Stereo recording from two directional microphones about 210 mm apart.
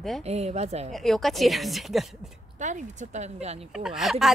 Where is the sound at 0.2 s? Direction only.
30° right (ahead or behind).